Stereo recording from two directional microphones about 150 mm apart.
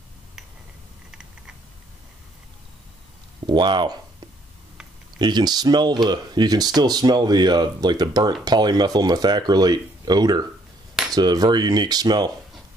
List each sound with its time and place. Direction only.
3.4 s speech: 30° right (ahead or behind)
5.2 s speech: 30° right (ahead or behind)